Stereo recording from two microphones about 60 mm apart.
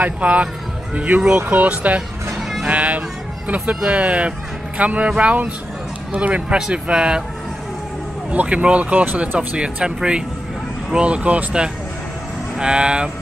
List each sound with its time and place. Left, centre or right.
0.0 s speech: right
8.3 s speech: right
9.6 s speech: centre